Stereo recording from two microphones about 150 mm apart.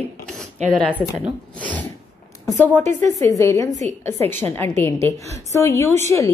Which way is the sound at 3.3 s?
20° left (ahead or behind).